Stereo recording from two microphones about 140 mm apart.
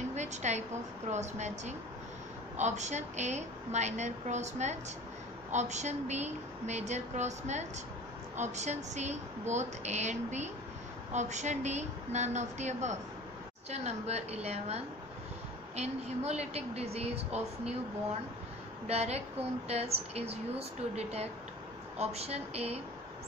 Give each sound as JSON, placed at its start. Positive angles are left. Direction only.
{"t": 0.1, "sound": "a sound", "side_deg": -55}
{"t": 1.1, "sound": "a woman's voice", "side_deg": -55}
{"t": 18.9, "sound": "a woman's voice", "side_deg": -50}